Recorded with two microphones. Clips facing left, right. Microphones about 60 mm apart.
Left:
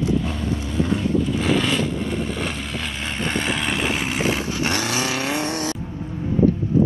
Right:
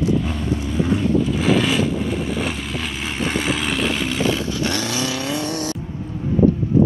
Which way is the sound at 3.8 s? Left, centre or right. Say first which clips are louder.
Right 2 dB; centre.